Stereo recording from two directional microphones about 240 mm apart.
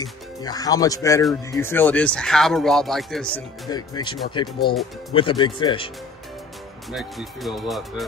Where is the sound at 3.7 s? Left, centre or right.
Centre.